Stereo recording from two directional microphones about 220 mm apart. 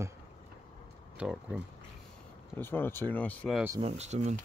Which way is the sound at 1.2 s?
5° right (ahead or behind).